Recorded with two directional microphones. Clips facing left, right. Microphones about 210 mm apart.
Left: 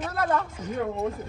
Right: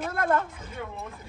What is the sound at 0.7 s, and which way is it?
Speech, 50° left (ahead or behind).